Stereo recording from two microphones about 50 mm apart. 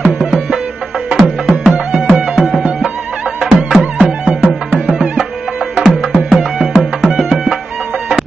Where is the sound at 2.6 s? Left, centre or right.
Centre.